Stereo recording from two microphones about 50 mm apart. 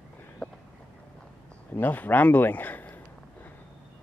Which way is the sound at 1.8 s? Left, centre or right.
Left.